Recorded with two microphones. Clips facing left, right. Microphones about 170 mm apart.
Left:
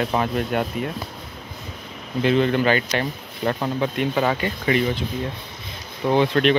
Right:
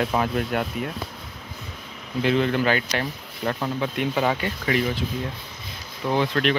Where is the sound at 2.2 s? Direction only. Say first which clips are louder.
Left 3 dB; 5° right (ahead or behind).